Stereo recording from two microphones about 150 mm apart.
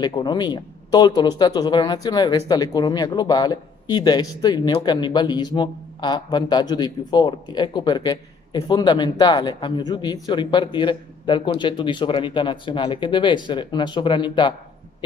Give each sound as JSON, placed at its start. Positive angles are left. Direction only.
{"t": 0.0, "sound": "speech", "side_deg": 30}